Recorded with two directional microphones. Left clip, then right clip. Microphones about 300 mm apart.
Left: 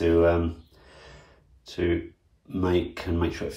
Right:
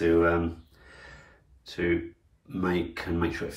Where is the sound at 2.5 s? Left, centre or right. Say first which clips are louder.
Left 3 dB; centre.